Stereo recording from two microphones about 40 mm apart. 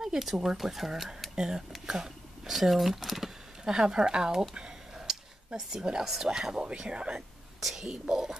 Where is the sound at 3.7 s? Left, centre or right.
Centre.